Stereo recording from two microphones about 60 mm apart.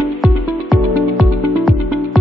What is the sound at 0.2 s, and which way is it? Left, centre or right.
Music, centre.